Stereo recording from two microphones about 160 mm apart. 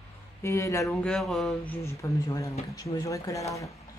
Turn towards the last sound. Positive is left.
turn(degrees=20)  # may be behind; listen again after turning